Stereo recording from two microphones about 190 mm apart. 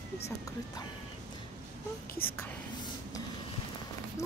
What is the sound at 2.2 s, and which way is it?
Speech, 50° left (ahead or behind).